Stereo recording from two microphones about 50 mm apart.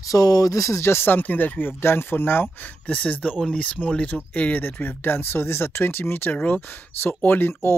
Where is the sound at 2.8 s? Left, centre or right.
Left.